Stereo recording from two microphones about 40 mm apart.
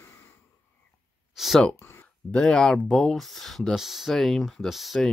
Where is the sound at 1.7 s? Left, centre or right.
Left.